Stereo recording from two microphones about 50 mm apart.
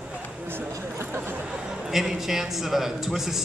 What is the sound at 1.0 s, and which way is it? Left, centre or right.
Speech, right.